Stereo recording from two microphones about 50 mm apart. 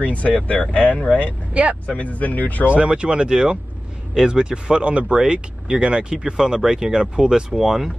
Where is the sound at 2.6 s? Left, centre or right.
Right; by 7.9 s centre.